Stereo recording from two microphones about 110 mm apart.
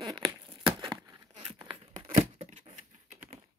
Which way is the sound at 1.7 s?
50° right (ahead or behind).